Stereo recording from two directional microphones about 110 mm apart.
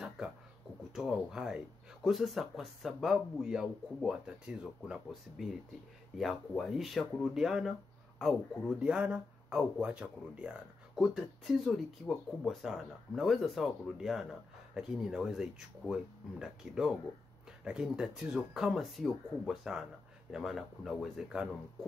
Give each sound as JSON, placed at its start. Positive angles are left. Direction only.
{"t": 0.9, "sound": "speech", "side_deg": -5}